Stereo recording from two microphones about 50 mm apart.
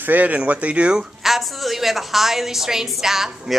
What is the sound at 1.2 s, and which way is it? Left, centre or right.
A woman's voice, centre.